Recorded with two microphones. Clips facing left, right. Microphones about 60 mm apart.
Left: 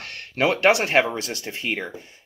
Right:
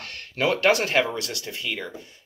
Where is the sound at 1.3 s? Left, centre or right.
Left.